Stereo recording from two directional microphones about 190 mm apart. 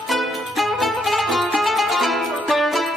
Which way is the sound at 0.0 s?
Centre (ahead or behind).